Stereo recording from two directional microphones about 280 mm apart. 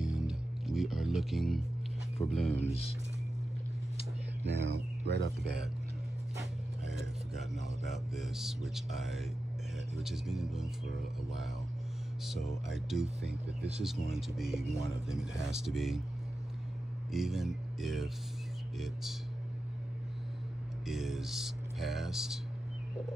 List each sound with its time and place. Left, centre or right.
0.0 s music: centre
2.1 s speech: centre
4.5 s speech: right
7.8 s speech: centre
12.3 s speech: centre
17.1 s speech: centre
20.8 s speech: centre